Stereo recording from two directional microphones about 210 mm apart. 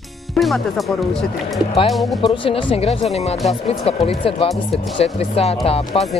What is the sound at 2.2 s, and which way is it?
Speech, 25° left (ahead or behind).